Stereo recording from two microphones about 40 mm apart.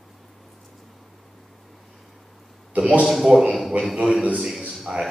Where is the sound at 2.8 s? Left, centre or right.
Right.